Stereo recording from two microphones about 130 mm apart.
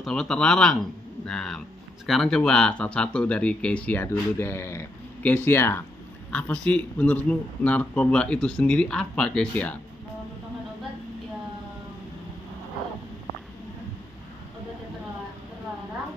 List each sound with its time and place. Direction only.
0.0 s a man's voice: 5° left (ahead or behind)
6.3 s a man's voice: 10° left (ahead or behind)